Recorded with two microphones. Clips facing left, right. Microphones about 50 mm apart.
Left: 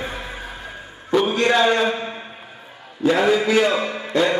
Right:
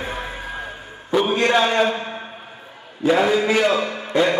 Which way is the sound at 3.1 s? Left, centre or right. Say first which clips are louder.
Even; centre.